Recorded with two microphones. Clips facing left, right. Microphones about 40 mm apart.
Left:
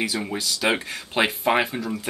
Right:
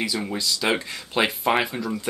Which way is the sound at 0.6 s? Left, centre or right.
Centre.